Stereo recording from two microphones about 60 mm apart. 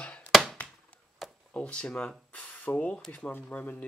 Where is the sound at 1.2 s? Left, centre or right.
Centre.